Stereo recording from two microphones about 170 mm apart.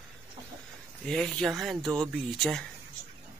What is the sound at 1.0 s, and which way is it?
Speech, 5° left (ahead or behind).